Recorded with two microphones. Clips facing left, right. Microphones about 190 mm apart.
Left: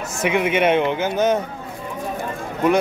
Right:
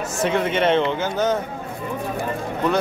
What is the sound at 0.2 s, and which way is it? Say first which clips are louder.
Speech: left 2 dB; 15° left (ahead or behind).